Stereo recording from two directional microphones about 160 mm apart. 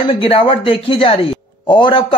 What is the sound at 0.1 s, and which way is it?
Speech, 35° left (ahead or behind).